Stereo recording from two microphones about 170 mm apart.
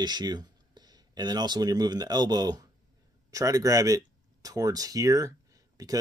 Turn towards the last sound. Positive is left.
turn(degrees=-20)  # may be behind; listen again after turning